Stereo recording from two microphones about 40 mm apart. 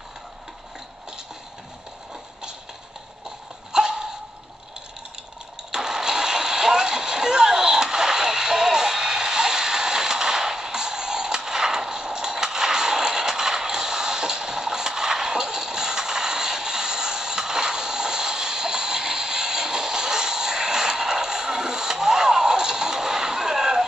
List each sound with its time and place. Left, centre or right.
3.7 s dog: centre
5.7 s vehicle: centre